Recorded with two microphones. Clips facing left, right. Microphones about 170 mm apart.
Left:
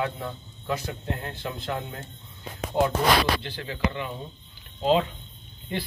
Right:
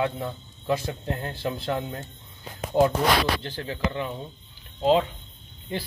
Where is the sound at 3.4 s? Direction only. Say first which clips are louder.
Even; 40° right (ahead or behind).